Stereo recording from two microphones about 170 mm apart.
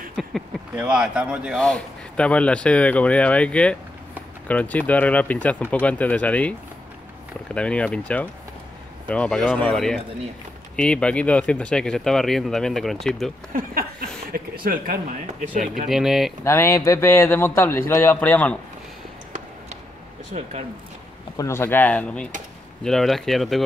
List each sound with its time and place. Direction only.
0.1 s a sound: centre (ahead or behind)
0.7 s speech: 5° right (ahead or behind)
1.6 s a man's voice: 5° left (ahead or behind)
7.5 s a man's voice: 5° left (ahead or behind)
13.5 s speech: 55° right (ahead or behind)
15.9 s speech: centre (ahead or behind)
16.4 s a man's voice: 15° left (ahead or behind)
20.3 s speech: 35° right (ahead or behind)
21.4 s a man's voice: 15° left (ahead or behind)